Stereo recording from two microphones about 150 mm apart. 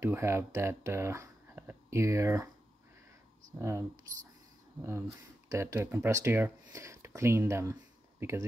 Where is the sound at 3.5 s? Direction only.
20° right (ahead or behind).